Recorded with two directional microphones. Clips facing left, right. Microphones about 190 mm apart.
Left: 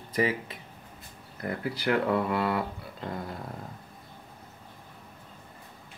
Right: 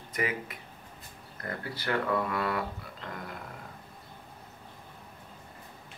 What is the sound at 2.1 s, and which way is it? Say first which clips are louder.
Speech: left 3 dB; 30° left (ahead or behind).